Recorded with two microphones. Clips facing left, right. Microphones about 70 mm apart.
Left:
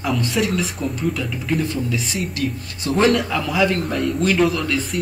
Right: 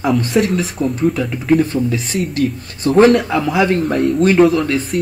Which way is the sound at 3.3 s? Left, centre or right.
Right.